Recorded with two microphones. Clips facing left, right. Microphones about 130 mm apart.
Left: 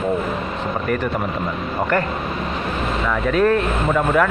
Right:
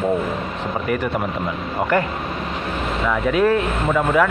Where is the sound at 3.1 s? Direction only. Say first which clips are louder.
Even; 10° right (ahead or behind).